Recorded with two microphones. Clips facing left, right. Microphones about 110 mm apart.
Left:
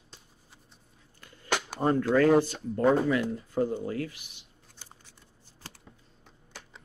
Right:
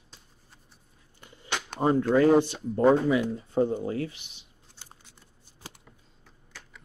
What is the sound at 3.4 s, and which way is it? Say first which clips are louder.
Speech: right 3 dB; 25° right (ahead or behind).